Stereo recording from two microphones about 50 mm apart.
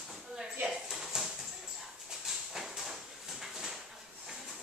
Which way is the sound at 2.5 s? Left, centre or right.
Centre.